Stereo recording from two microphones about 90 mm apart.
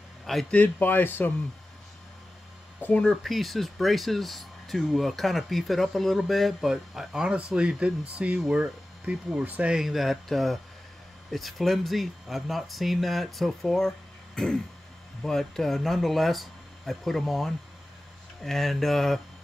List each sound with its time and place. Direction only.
0.5 s speech: 20° left (ahead or behind)
3.0 s speech: 5° left (ahead or behind)